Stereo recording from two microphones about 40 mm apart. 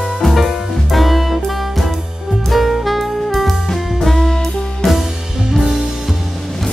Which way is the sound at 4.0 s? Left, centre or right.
Centre.